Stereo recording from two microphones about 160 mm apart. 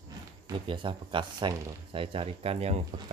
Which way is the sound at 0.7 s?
30° right (ahead or behind).